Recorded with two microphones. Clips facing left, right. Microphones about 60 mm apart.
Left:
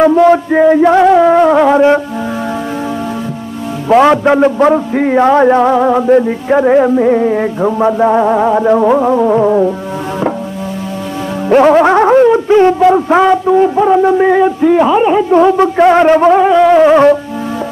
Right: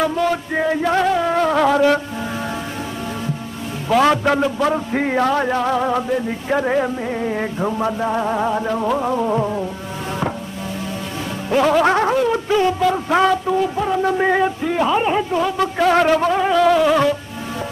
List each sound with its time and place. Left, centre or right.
0.0 s a sound: left
0.5 s music: left
1.0 s music: left
3.9 s music: left; by 7.7 s centre
7.7 s music: left
11.4 s music: left
11.8 s a sound: left
12.9 s music: left
14.1 s a sound: centre
15.3 s music: left